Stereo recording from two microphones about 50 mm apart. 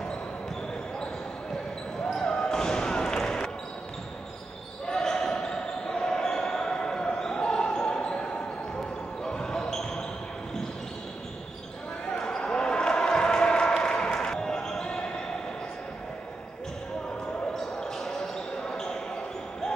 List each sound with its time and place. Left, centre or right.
2.1 s basketball bounce: centre
4.8 s basketball bounce: centre
9.2 s basketball bounce: centre
12.1 s basketball bounce: centre
17.6 s basketball bounce: centre